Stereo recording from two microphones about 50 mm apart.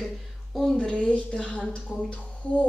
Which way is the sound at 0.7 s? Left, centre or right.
Centre.